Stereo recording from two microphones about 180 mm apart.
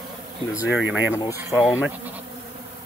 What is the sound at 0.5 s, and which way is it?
Speech, 5° right (ahead or behind).